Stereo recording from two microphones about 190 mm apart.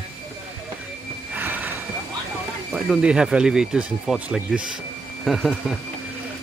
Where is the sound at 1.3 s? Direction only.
10° right (ahead or behind).